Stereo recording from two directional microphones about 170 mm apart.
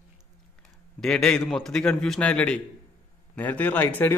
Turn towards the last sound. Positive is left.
turn(degrees=10)  # may be behind; listen again after turning